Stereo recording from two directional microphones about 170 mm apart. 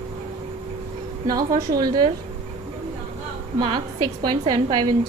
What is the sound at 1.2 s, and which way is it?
Speech, 20° right (ahead or behind).